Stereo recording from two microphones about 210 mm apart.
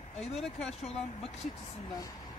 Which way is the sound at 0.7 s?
30° left (ahead or behind).